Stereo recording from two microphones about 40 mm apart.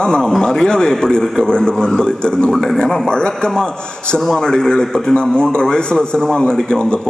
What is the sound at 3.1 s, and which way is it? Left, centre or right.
A man's voice, left.